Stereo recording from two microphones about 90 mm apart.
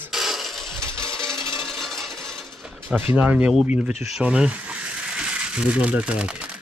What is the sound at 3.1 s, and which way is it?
Speech, 15° right (ahead or behind).